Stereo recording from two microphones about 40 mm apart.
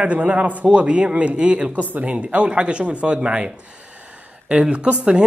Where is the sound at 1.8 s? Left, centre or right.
Right.